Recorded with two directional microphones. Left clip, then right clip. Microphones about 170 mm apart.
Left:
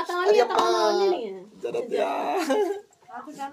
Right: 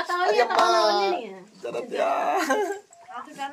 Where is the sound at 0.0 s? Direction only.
10° left (ahead or behind).